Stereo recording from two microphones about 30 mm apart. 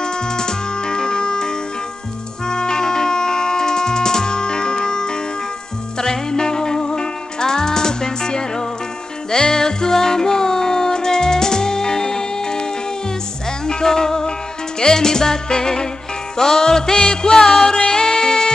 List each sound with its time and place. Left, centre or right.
0.0 s music: left
13.7 s music: left